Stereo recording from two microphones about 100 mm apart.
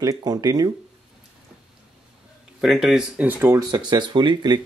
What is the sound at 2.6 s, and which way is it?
Speech, centre (ahead or behind).